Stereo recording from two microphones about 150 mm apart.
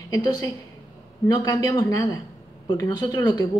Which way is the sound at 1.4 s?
25° left (ahead or behind).